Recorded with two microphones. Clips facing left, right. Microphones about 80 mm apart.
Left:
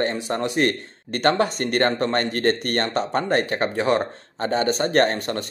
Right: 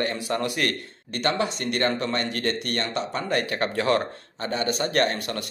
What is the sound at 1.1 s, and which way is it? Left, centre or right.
Speech, left.